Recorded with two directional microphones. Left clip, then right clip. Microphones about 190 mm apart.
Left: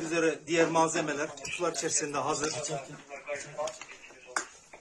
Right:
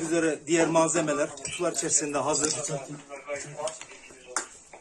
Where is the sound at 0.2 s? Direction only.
5° left (ahead or behind).